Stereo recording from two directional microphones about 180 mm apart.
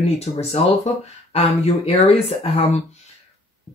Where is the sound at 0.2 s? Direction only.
35° left (ahead or behind).